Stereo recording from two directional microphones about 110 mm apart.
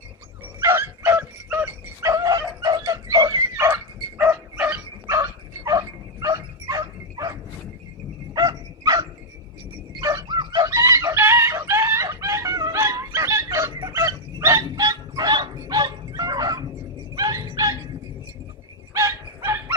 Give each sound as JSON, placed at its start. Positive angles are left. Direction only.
{"t": 0.6, "sound": "dog", "side_deg": -25}
{"t": 5.1, "sound": "dog", "side_deg": -30}
{"t": 9.9, "sound": "bow-wow", "side_deg": -30}
{"t": 10.2, "sound": "chicken", "side_deg": -45}
{"t": 17.1, "sound": "a sound", "side_deg": -35}
{"t": 18.9, "sound": "a sound", "side_deg": -25}